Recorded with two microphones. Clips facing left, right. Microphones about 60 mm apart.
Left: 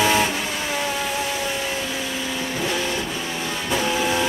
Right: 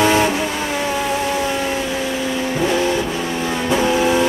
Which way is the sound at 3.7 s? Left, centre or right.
Centre.